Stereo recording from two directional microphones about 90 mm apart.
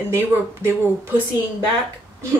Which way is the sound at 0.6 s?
25° right (ahead or behind).